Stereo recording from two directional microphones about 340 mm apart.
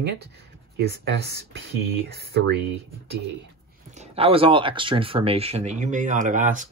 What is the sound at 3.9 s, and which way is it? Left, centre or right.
Speech, centre.